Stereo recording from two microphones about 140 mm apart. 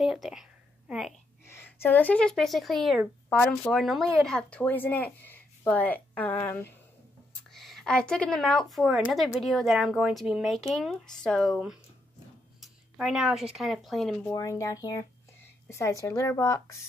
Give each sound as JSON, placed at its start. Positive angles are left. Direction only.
{"t": 0.0, "sound": "a sound", "side_deg": -5}
{"t": 1.4, "sound": "a woman's voice", "side_deg": 15}
{"t": 3.3, "sound": "a woman's voice", "side_deg": 10}
{"t": 3.8, "sound": "a woman's voice", "side_deg": 0}
{"t": 7.5, "sound": "a woman's voice", "side_deg": 0}
{"t": 14.2, "sound": "a woman's voice", "side_deg": 25}